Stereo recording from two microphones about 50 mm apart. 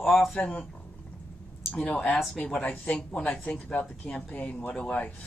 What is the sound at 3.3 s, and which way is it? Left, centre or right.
Speech, left.